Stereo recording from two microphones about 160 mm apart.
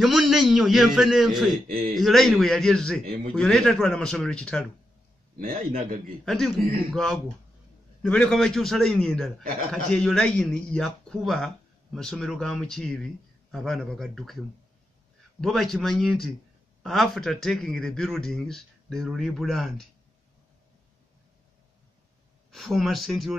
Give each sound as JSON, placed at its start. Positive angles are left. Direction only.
{"t": 0.0, "sound": "speech", "side_deg": 0}
{"t": 5.4, "sound": "a man's voice", "side_deg": -60}
{"t": 6.2, "sound": "speech", "side_deg": 5}
{"t": 15.4, "sound": "speech", "side_deg": 0}
{"t": 22.5, "sound": "speech", "side_deg": 0}